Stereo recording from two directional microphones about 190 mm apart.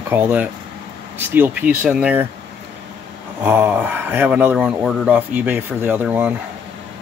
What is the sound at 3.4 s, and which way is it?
Speech, 10° right (ahead or behind).